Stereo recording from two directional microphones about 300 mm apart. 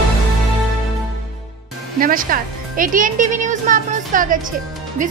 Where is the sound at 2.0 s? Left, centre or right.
Right.